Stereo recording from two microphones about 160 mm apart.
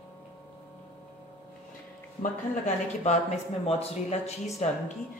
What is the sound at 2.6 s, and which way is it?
Speech, 45° left (ahead or behind).